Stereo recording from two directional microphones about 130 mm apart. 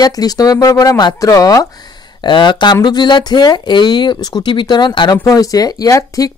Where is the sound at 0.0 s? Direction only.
30° left (ahead or behind).